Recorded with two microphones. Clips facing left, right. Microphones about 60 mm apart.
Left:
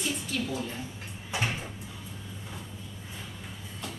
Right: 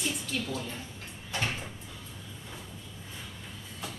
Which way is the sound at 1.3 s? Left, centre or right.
Centre.